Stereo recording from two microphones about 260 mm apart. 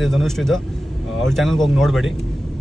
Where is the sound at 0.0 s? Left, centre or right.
Centre.